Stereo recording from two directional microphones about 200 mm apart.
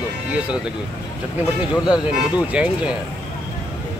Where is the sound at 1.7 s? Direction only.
20° left (ahead or behind).